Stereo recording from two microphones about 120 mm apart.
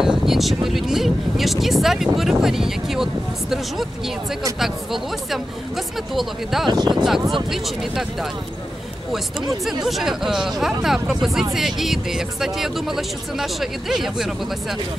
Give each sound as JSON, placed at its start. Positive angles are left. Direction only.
{"t": 0.0, "sound": "speech", "side_deg": -5}
{"t": 6.7, "sound": "speech", "side_deg": -35}
{"t": 7.0, "sound": "speech", "side_deg": -5}
{"t": 9.8, "sound": "speech", "side_deg": 0}